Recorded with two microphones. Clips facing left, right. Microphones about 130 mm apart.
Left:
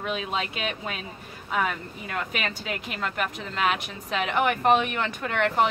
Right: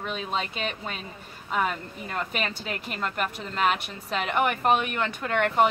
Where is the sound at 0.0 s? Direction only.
5° left (ahead or behind).